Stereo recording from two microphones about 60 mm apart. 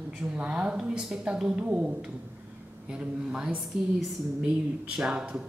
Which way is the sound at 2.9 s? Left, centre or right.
Centre.